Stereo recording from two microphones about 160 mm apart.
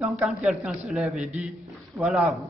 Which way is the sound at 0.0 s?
5° right (ahead or behind).